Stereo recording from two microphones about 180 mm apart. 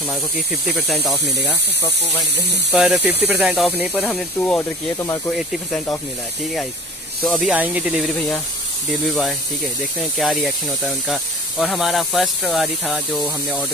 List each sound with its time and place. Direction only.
0.5 s speech: centre (ahead or behind)
2.7 s speech: 5° right (ahead or behind)
4.6 s speech: 15° left (ahead or behind)
5.3 s speech: centre (ahead or behind)
7.2 s speech: centre (ahead or behind)
8.1 s speech: 5° left (ahead or behind)
10.1 s speech: centre (ahead or behind)